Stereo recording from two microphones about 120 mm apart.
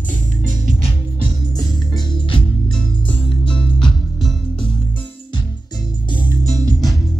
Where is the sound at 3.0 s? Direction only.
10° left (ahead or behind).